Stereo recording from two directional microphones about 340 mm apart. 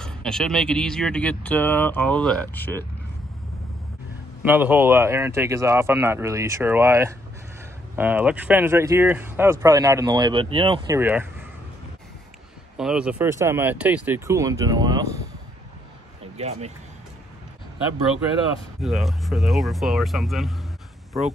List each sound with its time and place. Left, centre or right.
0.0 s speech: centre
4.4 s speech: centre
12.7 s speech: centre
16.3 s speech: centre
18.8 s speech: centre